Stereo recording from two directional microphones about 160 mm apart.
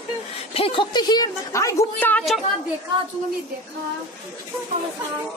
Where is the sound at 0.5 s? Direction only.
35° left (ahead or behind); by 2.2 s 10° left (ahead or behind).